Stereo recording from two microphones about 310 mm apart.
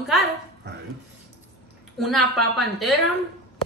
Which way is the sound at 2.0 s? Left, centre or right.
Centre.